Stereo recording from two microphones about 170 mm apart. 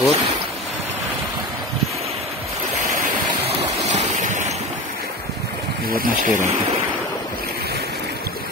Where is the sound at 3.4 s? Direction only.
45° right (ahead or behind).